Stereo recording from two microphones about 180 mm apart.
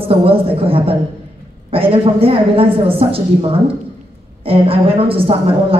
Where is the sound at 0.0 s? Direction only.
30° right (ahead or behind).